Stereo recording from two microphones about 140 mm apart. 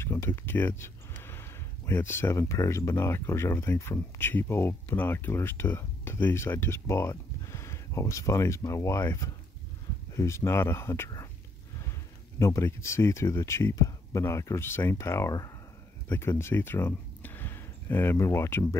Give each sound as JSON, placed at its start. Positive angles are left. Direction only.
{"t": 0.0, "sound": "speech", "side_deg": 20}